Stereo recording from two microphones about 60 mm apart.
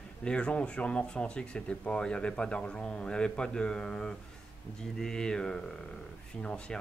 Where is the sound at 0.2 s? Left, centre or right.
Centre.